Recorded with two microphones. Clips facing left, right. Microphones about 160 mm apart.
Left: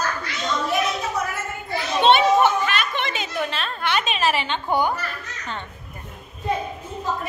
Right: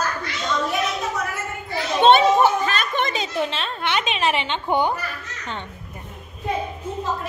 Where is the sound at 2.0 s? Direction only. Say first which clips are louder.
Right 2 dB; 40° right (ahead or behind).